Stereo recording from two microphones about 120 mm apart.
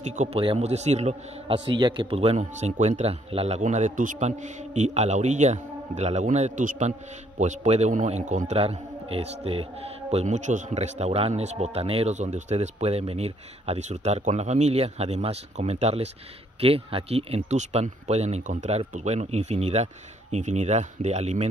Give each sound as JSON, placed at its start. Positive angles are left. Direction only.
{"t": 0.0, "sound": "speech", "side_deg": -75}
{"t": 0.4, "sound": "a man's voice", "side_deg": -55}
{"t": 1.5, "sound": "speech", "side_deg": -45}
{"t": 8.5, "sound": "a man's voice", "side_deg": -55}